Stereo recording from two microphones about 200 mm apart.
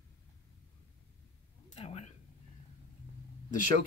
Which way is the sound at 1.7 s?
30° left (ahead or behind).